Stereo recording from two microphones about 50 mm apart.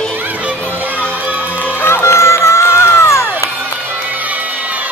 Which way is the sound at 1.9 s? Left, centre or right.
Left.